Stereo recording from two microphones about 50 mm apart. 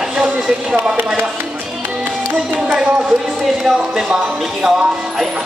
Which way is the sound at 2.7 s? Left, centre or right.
Centre.